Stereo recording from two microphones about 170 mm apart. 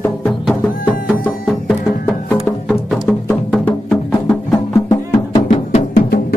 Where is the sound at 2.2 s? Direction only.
10° left (ahead or behind).